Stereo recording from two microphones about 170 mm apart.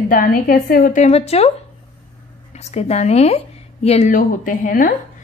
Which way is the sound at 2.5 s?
40° left (ahead or behind).